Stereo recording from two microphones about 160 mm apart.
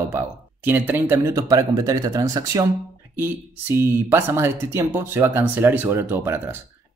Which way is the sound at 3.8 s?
15° right (ahead or behind).